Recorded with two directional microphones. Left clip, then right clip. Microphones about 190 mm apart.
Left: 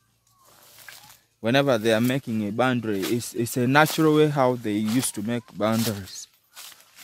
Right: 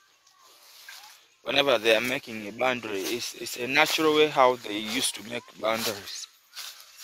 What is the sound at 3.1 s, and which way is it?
Speech, 40° left (ahead or behind).